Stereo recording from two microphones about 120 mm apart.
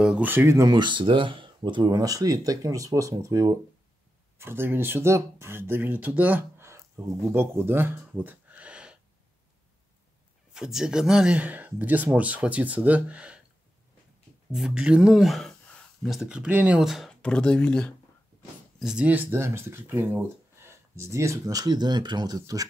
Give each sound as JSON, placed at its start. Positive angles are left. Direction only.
{"t": 0.0, "sound": "speech", "side_deg": -15}
{"t": 10.5, "sound": "speech", "side_deg": -5}
{"t": 14.5, "sound": "speech", "side_deg": -5}
{"t": 18.8, "sound": "speech", "side_deg": -5}